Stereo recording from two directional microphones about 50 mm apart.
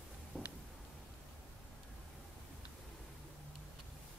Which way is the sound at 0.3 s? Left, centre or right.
Right.